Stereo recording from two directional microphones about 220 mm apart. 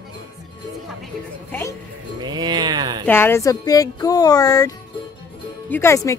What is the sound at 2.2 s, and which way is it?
Speech, 20° right (ahead or behind).